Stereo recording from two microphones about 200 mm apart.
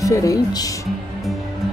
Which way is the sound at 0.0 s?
15° left (ahead or behind).